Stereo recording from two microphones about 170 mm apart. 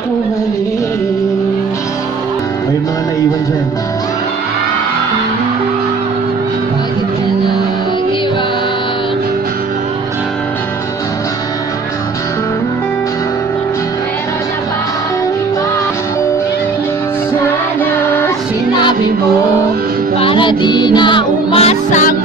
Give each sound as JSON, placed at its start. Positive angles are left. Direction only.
{"t": 20.2, "sound": "music", "side_deg": 30}